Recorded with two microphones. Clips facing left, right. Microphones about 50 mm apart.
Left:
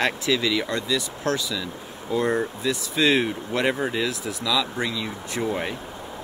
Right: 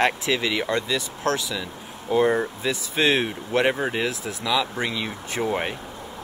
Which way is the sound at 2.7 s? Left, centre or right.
Right.